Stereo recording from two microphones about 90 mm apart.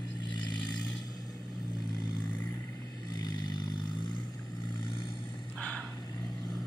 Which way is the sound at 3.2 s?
55° left (ahead or behind).